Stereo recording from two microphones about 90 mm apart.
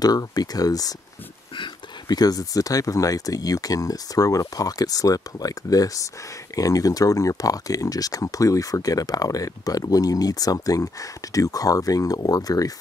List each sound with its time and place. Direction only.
0.0 s speech: 45° left (ahead or behind)